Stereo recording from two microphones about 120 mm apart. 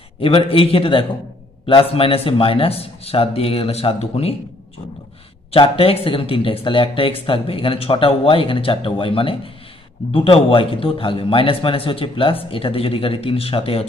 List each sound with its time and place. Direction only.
0.2 s speech: 50° left (ahead or behind)
5.5 s speech: 50° left (ahead or behind)